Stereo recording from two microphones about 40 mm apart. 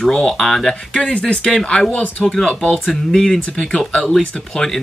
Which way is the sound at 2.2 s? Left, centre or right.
Centre.